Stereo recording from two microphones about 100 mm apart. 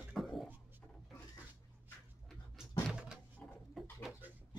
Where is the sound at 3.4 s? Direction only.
15° left (ahead or behind).